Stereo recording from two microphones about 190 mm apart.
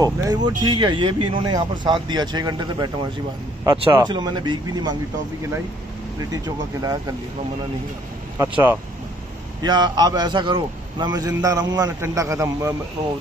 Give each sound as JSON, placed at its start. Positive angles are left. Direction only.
{"t": 0.0, "sound": "a man's voice", "side_deg": -20}
{"t": 6.3, "sound": "a man's voice", "side_deg": -20}
{"t": 9.6, "sound": "a man's voice", "side_deg": -25}